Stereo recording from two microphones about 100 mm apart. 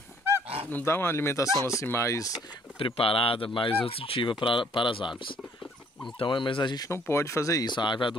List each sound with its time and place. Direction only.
0.7 s speech: 20° left (ahead or behind)
2.8 s speech: 65° left (ahead or behind); by 6.9 s 50° left (ahead or behind)
6.9 s speech: 25° left (ahead or behind)
7.6 s speech: 50° left (ahead or behind)